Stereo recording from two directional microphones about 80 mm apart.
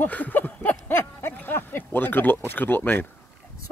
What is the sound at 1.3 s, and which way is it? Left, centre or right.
Speech, left.